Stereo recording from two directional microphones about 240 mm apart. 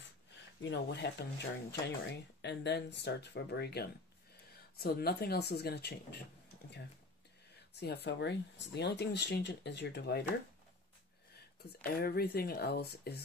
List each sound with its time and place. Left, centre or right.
0.6 s speech: left
7.8 s speech: left
11.8 s speech: left